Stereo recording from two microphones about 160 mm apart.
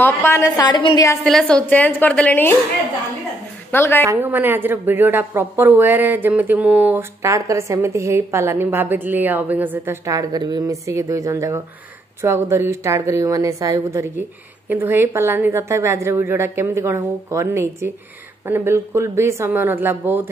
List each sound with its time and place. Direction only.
0.0 s a woman's voice: 15° left (ahead or behind)
1.2 s a woman's voice: 5° left (ahead or behind)
3.7 s a woman's voice: 15° left (ahead or behind)
4.0 s a woman's voice: 15° right (ahead or behind)